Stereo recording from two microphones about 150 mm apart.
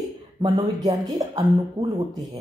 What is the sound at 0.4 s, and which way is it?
A woman's voice, 25° right (ahead or behind).